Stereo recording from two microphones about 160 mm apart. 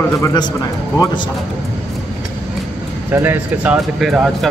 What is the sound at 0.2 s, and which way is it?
A man's voice, 25° left (ahead or behind).